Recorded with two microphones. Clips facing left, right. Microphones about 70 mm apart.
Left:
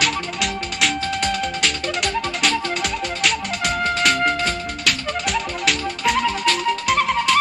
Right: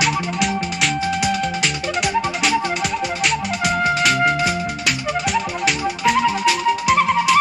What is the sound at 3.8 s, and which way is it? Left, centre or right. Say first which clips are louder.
Music: right 1 dB; centre.